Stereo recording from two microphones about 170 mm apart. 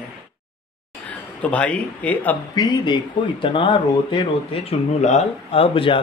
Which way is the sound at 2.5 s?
25° left (ahead or behind).